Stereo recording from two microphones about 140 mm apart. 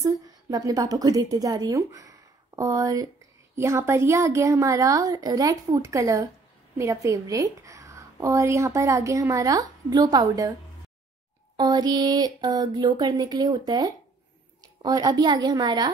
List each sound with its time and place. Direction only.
0.0 s a woman's voice: 25° right (ahead or behind)
11.5 s a woman's voice: 30° right (ahead or behind)